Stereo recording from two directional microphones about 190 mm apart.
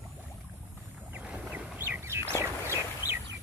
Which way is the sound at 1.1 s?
5° right (ahead or behind).